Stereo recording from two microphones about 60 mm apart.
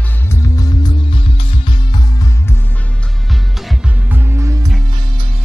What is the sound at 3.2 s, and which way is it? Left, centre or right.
Music, centre.